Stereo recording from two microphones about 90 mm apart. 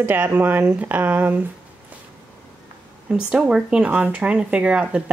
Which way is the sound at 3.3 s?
10° right (ahead or behind).